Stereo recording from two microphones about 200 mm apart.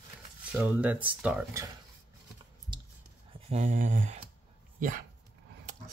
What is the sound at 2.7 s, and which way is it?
Whispering, 20° right (ahead or behind).